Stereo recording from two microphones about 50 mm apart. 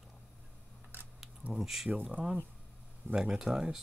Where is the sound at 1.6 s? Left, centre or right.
Centre.